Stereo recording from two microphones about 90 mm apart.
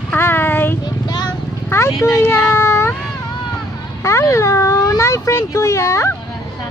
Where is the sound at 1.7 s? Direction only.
30° left (ahead or behind).